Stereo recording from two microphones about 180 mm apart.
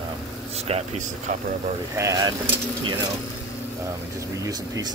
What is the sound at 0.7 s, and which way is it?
Speech, 40° right (ahead or behind).